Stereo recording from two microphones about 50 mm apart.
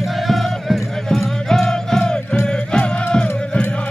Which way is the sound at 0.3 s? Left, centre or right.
Centre.